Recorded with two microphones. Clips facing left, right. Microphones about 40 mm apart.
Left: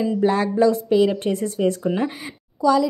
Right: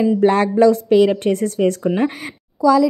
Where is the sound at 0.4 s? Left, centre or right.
Right.